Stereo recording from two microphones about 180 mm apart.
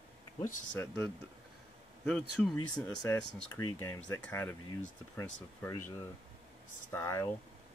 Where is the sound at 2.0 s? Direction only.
5° left (ahead or behind).